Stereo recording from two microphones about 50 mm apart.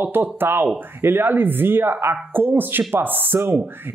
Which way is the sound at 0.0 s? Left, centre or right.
Right.